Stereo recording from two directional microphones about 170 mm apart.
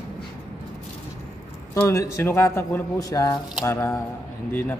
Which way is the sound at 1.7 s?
20° left (ahead or behind).